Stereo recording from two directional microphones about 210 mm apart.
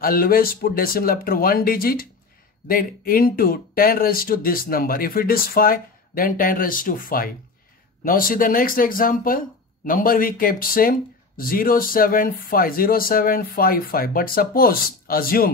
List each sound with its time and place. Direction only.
0.0 s speech: 45° left (ahead or behind)